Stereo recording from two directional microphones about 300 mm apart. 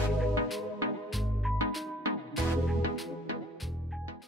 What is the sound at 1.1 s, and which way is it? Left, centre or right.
Music, centre.